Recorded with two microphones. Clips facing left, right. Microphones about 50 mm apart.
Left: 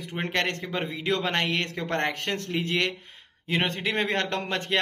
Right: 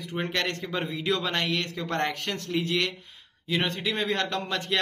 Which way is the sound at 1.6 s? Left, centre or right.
Left.